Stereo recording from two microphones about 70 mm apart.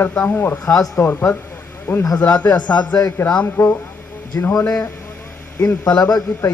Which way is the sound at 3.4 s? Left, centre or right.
Left.